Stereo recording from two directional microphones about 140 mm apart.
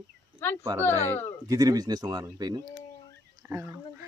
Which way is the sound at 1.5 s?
25° right (ahead or behind).